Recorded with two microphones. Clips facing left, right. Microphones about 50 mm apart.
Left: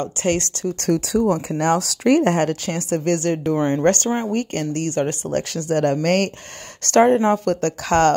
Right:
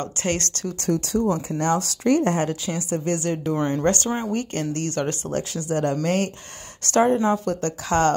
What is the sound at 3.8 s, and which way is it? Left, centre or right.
Speech, left.